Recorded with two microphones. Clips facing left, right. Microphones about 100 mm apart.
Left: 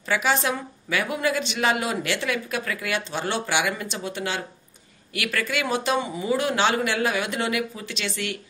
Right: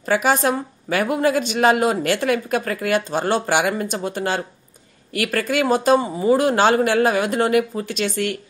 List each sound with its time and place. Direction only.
0.0 s a woman's voice: 45° right (ahead or behind)